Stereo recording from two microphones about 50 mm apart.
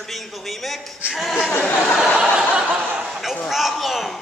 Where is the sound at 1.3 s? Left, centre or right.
Left.